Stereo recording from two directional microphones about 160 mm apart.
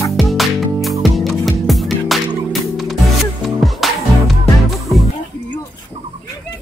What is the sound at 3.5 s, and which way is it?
Music, centre (ahead or behind).